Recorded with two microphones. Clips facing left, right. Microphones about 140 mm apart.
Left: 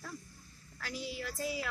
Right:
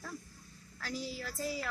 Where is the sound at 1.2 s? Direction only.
5° left (ahead or behind).